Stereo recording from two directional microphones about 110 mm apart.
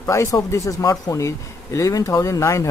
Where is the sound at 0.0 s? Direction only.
25° left (ahead or behind).